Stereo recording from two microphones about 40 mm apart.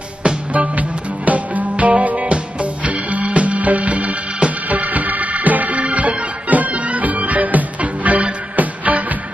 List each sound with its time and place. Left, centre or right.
0.2 s music: right